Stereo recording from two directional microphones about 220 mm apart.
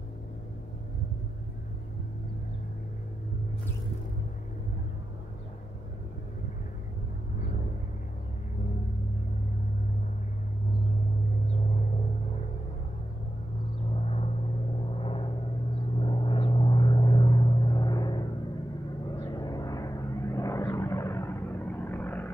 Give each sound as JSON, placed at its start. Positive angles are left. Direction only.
{"t": 14.0, "sound": "gong", "side_deg": 25}
{"t": 15.0, "sound": "vehicle", "side_deg": 25}